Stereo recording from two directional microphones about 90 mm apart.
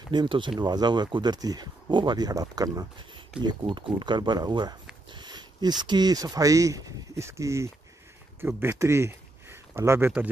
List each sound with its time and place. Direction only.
0.1 s speech: 60° right (ahead or behind); by 2.9 s 45° right (ahead or behind)
3.3 s speech: 65° right (ahead or behind); by 10.1 s 25° right (ahead or behind)